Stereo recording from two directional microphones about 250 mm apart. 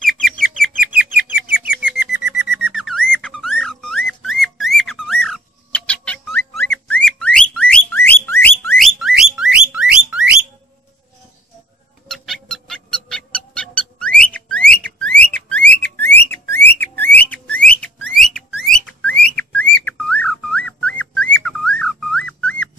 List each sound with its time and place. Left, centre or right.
0.0 s bird: centre
2.5 s music: centre
6.7 s whistling: centre
12.1 s music: centre
15.7 s a sound: centre
19.2 s music: centre